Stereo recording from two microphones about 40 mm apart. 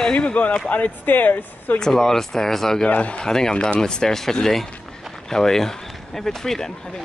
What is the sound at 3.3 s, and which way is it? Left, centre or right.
Speech, centre.